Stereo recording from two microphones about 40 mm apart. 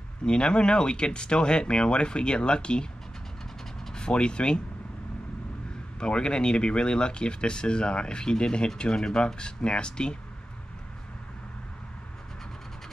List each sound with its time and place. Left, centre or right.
0.2 s speech: left
3.9 s speech: left
5.9 s speech: left